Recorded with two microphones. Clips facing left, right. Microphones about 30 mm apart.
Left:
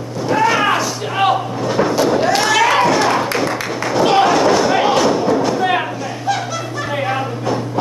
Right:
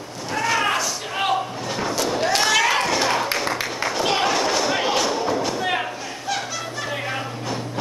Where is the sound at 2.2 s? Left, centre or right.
Centre.